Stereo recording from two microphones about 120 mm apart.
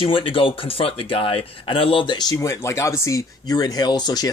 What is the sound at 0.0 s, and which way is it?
Speech, 45° left (ahead or behind).